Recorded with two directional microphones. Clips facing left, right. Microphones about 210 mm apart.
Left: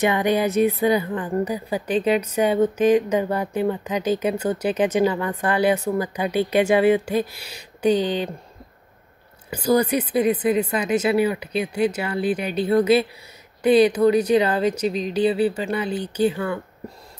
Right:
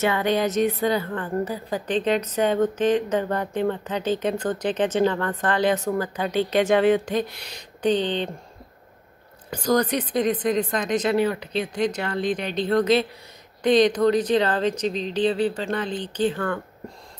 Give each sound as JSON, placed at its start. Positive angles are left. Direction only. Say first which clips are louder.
{"t": 0.0, "sound": "a woman's voice", "louder": "left 2 dB", "side_deg": 15}
{"t": 9.5, "sound": "a woman's voice", "louder": "left 2 dB", "side_deg": 10}